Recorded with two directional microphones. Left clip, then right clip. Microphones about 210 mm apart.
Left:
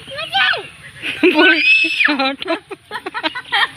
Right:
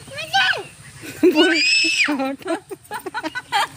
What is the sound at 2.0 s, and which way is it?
Speech, 5° right (ahead or behind).